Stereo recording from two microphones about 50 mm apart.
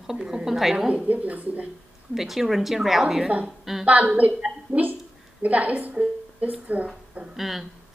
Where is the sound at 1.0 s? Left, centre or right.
Right.